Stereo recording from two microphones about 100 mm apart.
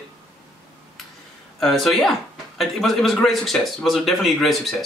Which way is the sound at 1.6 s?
Centre (ahead or behind).